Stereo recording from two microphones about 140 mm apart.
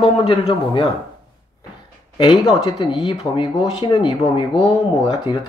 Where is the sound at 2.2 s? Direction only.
30° left (ahead or behind).